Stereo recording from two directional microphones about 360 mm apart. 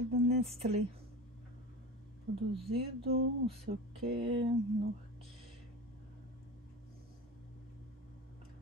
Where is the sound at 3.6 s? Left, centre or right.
Right.